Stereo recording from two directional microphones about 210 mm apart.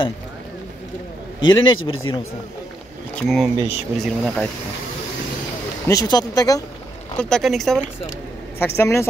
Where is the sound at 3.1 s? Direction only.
Centre (ahead or behind).